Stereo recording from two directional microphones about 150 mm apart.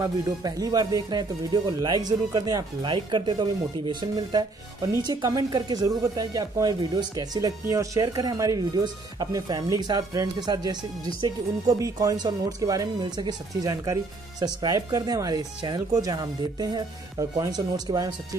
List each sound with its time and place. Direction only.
0.0 s speech: 25° right (ahead or behind)